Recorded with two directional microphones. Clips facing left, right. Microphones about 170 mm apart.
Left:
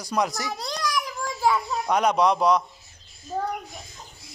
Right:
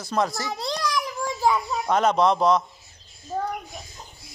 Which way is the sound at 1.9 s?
10° left (ahead or behind).